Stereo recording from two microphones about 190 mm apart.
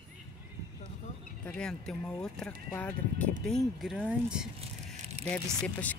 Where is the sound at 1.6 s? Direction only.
5° left (ahead or behind).